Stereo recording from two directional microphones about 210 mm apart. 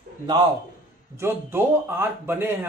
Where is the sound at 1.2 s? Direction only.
10° right (ahead or behind).